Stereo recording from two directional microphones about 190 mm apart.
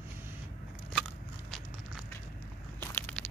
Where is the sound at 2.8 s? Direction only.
10° left (ahead or behind).